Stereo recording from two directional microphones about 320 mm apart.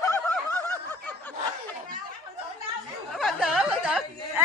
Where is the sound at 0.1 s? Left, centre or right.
Centre.